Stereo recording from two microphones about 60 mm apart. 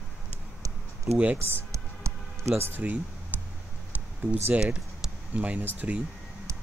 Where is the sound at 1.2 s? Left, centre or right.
Right.